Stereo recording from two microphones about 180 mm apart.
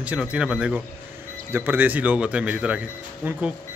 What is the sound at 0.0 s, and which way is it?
Speech, 5° right (ahead or behind).